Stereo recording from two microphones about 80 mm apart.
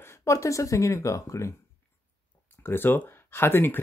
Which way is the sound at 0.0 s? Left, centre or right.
Left.